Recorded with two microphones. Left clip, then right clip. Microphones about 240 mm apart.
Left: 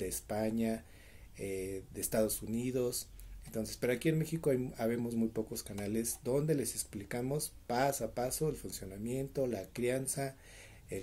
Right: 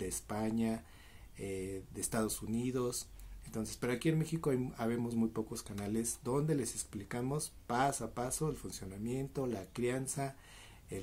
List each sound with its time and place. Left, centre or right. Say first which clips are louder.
0.0 s speech: left 3 dB; centre